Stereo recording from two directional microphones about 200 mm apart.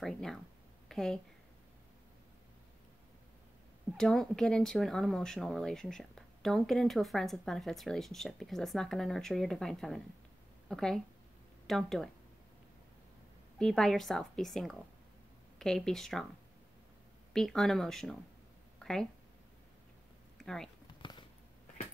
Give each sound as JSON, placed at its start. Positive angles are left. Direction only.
{"t": 0.0, "sound": "a woman's voice", "side_deg": 0}
{"t": 3.9, "sound": "speech", "side_deg": 5}
{"t": 13.6, "sound": "speech", "side_deg": 5}
{"t": 17.3, "sound": "speech", "side_deg": 0}
{"t": 18.8, "sound": "a sound", "side_deg": 5}
{"t": 20.3, "sound": "speech", "side_deg": 0}
{"t": 21.0, "sound": "a sound", "side_deg": 25}